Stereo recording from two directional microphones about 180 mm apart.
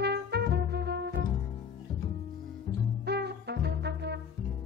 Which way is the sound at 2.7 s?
25° left (ahead or behind).